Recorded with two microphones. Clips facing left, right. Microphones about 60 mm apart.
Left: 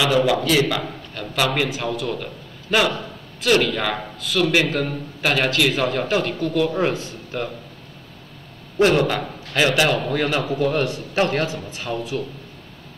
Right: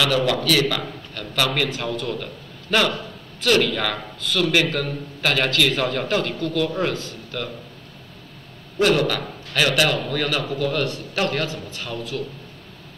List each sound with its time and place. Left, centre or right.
0.0 s a man's voice: centre
8.7 s speech: left